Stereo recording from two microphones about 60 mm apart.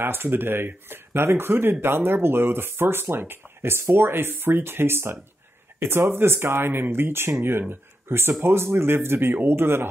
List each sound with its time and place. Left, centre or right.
0.0 s speech: right